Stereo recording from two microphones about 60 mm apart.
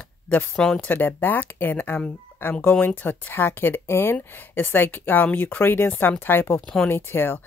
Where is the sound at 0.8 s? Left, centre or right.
Left.